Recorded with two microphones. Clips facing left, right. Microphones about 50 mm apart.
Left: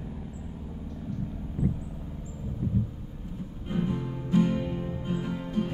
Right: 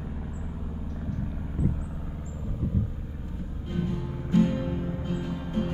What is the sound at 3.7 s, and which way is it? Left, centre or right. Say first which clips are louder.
Music: left 2 dB; centre.